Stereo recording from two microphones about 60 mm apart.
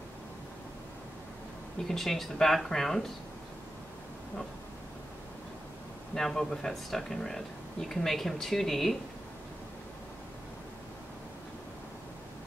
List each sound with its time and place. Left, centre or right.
1.9 s speech: centre
6.1 s speech: centre